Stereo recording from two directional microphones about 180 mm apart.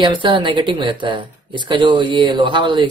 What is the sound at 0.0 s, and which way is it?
Speech, 25° right (ahead or behind).